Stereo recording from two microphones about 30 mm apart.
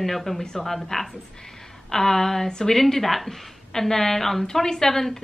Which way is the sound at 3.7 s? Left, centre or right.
Centre.